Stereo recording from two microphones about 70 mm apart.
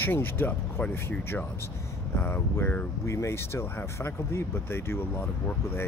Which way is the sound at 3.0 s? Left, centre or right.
Left.